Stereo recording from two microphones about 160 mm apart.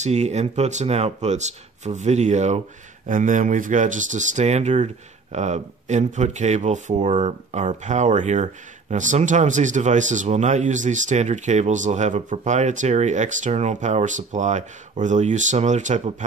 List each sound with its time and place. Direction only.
0.0 s speech: 45° right (ahead or behind)